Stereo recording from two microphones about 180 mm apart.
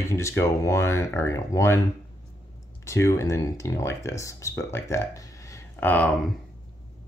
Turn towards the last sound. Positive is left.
turn(degrees=5)  # may be behind; listen again after turning